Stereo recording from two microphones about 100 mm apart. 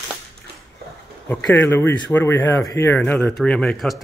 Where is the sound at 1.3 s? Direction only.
20° left (ahead or behind); by 4.0 s centre (ahead or behind).